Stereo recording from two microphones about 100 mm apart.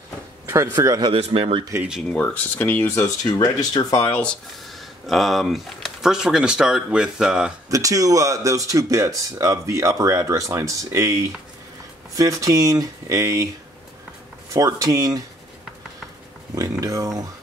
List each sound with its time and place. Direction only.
0.7 s speech: 40° right (ahead or behind)
1.1 s speech: 65° right (ahead or behind)
2.0 s speech: 15° left (ahead or behind)
3.0 s speech: 45° left (ahead or behind)
5.0 s speech: centre (ahead or behind)
7.7 s speech: 35° right (ahead or behind)
12.2 s speech: 35° right (ahead or behind)
14.5 s speech: 35° right (ahead or behind)
16.8 s speech: 35° right (ahead or behind)